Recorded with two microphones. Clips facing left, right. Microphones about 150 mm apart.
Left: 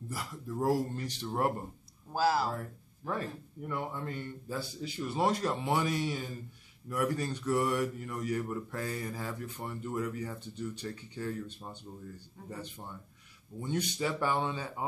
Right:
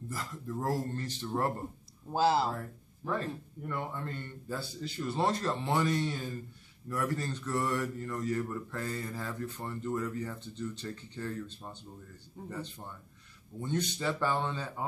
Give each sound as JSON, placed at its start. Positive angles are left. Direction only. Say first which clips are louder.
{"t": 0.1, "sound": "a man's voice", "louder": "even", "side_deg": 10}
{"t": 2.1, "sound": "speech", "louder": "right 2 dB", "side_deg": -25}
{"t": 3.2, "sound": "a man's voice", "louder": "right 1 dB", "side_deg": 15}
{"t": 12.4, "sound": "speech", "louder": "right 3 dB", "side_deg": -20}
{"t": 13.6, "sound": "a man's voice", "louder": "left 1 dB", "side_deg": 15}